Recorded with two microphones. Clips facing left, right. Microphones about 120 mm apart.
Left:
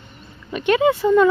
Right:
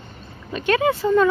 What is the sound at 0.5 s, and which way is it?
Speech, 20° left (ahead or behind).